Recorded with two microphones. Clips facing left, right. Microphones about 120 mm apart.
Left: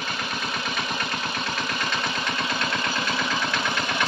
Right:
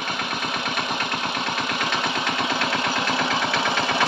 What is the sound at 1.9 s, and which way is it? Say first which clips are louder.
Engine: right 3 dB; 70° right (ahead or behind).